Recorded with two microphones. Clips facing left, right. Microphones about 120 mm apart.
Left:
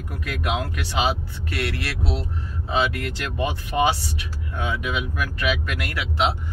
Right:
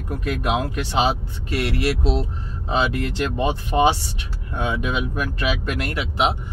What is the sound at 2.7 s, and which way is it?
Speech, 25° right (ahead or behind).